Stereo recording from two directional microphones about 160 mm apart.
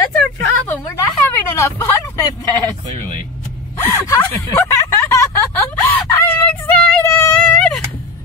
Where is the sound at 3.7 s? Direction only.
15° left (ahead or behind).